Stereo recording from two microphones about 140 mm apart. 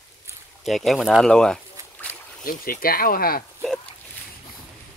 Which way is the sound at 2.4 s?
90° left.